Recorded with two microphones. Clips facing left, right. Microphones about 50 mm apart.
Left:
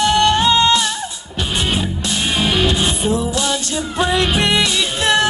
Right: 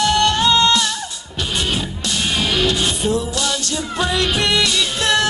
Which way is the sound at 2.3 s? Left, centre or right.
Left.